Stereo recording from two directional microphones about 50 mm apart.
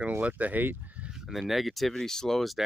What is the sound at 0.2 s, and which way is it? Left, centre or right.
Speech, right.